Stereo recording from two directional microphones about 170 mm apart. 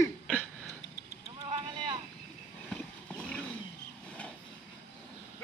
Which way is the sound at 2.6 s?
5° left (ahead or behind).